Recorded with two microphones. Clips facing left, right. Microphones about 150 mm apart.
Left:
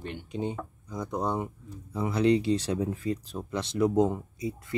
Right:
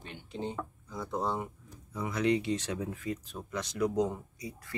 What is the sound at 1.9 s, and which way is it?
Speech, 30° left (ahead or behind).